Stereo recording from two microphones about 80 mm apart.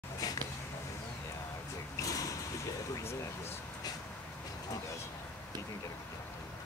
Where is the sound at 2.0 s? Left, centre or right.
Left.